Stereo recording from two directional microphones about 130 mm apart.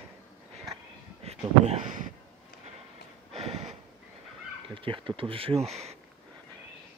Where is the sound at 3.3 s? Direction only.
55° right (ahead or behind).